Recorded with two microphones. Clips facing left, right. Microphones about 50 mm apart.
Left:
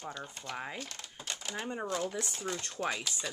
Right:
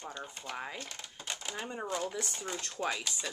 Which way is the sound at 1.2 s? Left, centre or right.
Centre.